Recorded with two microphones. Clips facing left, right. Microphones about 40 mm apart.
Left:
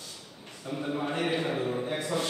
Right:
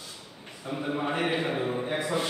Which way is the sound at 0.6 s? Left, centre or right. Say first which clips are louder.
Right 2 dB; centre.